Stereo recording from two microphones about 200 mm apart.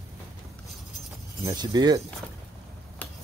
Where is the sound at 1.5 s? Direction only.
20° right (ahead or behind).